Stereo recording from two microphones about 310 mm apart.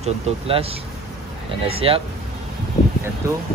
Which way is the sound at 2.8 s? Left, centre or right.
Left.